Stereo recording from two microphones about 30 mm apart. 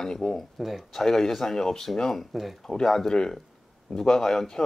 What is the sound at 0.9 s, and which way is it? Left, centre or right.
Speech, centre.